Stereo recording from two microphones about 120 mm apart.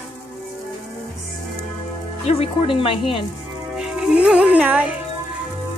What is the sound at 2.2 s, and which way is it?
Speech, 55° left (ahead or behind).